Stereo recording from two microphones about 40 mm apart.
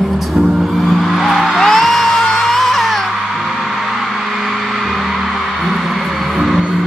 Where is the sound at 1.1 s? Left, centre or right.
Centre.